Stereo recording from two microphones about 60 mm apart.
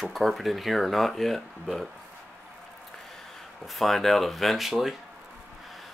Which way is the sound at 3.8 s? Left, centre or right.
Centre.